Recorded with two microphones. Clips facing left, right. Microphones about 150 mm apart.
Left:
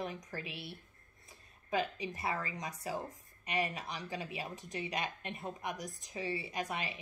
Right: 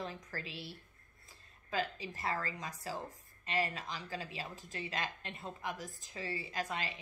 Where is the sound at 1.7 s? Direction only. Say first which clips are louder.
Left 3 dB; 20° left (ahead or behind).